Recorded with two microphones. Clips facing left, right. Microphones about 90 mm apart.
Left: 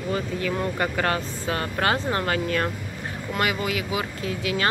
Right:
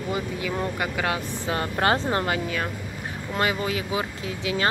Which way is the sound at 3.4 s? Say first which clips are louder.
Even; 30° right (ahead or behind).